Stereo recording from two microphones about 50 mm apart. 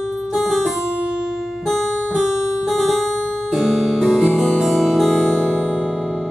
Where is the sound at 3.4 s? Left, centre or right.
Centre.